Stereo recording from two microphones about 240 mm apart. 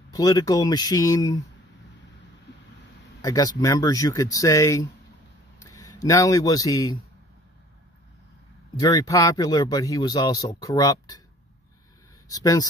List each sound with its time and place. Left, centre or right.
0.1 s speech: centre
2.5 s vehicle: left
3.2 s speech: centre
8.7 s speech: centre
12.3 s speech: centre